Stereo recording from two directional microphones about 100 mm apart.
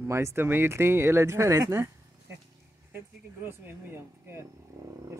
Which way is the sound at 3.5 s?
25° right (ahead or behind).